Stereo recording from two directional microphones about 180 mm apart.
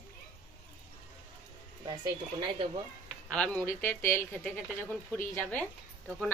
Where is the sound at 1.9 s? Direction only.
25° right (ahead or behind).